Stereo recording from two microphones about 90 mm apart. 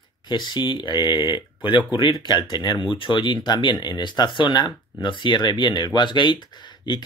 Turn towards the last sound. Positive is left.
turn(degrees=55)  # may be behind; listen again after turning